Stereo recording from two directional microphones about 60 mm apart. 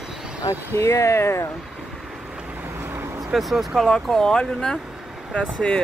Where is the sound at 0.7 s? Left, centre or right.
Left.